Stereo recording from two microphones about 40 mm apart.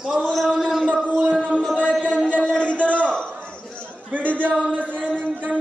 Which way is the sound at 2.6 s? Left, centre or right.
Left.